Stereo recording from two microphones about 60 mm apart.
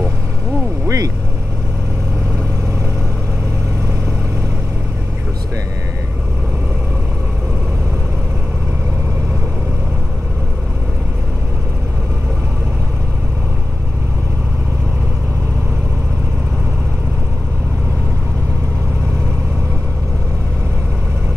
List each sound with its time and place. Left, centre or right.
0.8 s vehicle: right